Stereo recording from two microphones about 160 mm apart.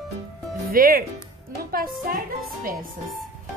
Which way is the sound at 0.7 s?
65° right (ahead or behind).